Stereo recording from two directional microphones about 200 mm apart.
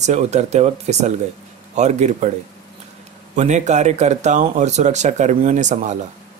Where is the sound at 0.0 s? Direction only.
35° right (ahead or behind).